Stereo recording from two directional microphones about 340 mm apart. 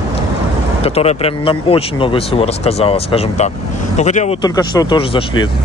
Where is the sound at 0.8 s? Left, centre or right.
Centre.